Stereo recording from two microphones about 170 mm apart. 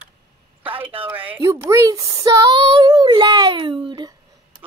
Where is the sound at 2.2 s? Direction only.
20° right (ahead or behind).